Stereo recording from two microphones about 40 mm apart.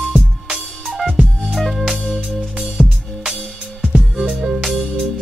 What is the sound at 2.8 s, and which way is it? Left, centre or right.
Music, centre.